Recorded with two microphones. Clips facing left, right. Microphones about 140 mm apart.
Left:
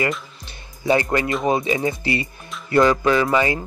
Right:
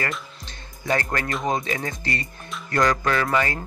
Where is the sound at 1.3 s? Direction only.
10° left (ahead or behind).